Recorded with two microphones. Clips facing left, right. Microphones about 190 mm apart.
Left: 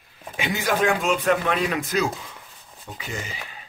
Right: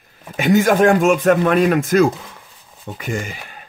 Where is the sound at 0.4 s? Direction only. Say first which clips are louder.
Right 10 dB; 50° right (ahead or behind).